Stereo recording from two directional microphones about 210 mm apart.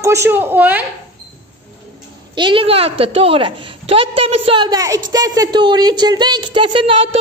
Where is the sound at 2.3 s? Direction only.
25° right (ahead or behind).